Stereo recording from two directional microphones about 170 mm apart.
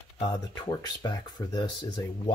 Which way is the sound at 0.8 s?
25° left (ahead or behind).